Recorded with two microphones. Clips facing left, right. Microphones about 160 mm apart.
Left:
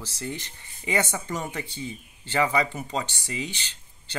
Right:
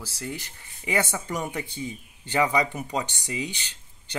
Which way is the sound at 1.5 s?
15° right (ahead or behind).